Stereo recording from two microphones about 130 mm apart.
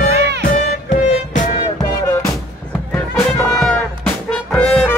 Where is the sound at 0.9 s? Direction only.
70° left (ahead or behind).